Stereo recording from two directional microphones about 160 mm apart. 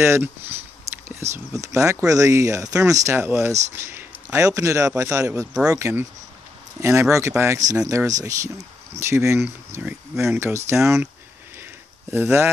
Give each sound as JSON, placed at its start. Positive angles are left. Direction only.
{"t": 0.0, "sound": "a man's voice", "side_deg": -15}
{"t": 10.8, "sound": "speech", "side_deg": 0}
{"t": 12.1, "sound": "speech", "side_deg": -15}